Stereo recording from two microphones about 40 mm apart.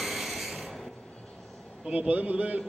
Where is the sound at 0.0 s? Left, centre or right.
Centre.